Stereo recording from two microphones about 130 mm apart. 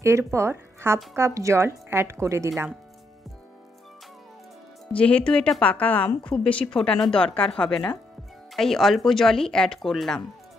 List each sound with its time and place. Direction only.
0.0 s speech: 20° right (ahead or behind)
4.9 s a woman's voice: 10° left (ahead or behind)